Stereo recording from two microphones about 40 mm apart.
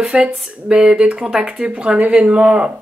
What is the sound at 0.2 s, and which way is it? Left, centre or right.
Speech, right.